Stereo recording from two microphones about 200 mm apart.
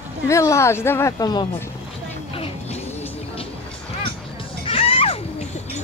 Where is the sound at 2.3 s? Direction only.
30° left (ahead or behind).